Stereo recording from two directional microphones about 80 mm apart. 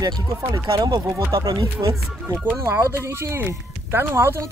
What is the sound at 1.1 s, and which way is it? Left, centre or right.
Speech, right.